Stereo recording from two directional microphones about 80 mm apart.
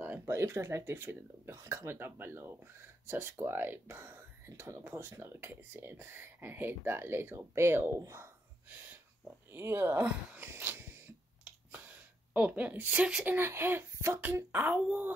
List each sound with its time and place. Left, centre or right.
0.0 s a sound: right
0.3 s speech: right
8.6 s whispering: right
9.5 s speech: right
10.4 s a sound: right
11.7 s speech: right